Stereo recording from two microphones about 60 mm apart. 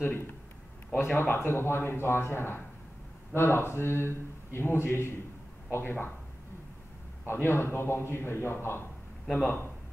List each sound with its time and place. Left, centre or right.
0.9 s a man's voice: left
7.2 s speech: left